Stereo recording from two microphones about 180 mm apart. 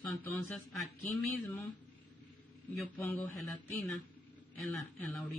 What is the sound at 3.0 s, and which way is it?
Speech, 10° left (ahead or behind).